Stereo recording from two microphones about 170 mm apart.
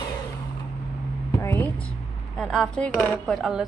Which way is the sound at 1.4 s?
10° left (ahead or behind).